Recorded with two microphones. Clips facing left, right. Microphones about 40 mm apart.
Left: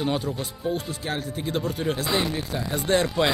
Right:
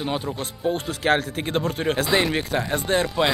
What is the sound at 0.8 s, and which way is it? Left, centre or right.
Speech, right.